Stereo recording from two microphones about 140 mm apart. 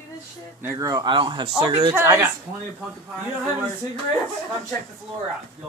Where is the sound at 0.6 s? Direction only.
25° right (ahead or behind).